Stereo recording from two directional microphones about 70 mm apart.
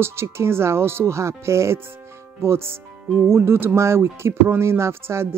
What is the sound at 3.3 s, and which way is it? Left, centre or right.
Speech, right.